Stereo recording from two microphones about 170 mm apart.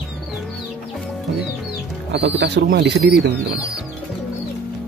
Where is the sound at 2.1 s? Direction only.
85° right.